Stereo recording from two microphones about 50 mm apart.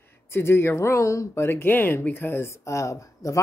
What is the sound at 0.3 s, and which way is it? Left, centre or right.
Speech, left.